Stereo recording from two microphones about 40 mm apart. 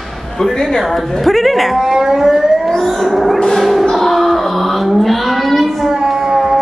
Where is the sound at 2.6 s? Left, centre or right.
Centre.